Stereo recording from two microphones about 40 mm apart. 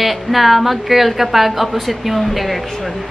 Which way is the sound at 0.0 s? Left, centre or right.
Centre.